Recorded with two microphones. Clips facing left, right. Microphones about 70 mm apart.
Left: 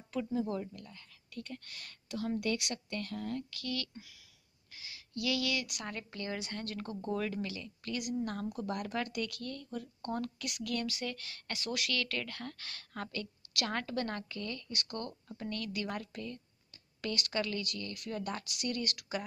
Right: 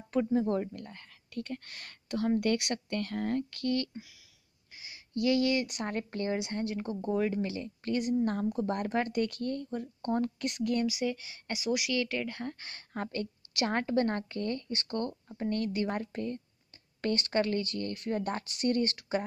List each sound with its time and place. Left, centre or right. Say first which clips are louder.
0.1 s speech: right 7 dB; right
4.7 s speech: right 7 dB; right
6.4 s speech: right 7 dB; centre
7.4 s speech: right 7 dB; right
10.9 s speech: right 7 dB; centre; by 19.2 s right